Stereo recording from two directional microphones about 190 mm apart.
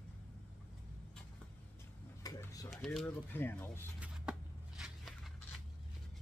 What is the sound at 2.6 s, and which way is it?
Speech, centre (ahead or behind).